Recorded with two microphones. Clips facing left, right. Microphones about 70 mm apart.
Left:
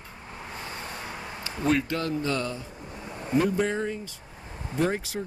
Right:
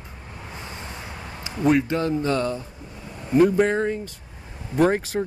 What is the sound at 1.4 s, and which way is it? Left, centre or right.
A man's voice, centre.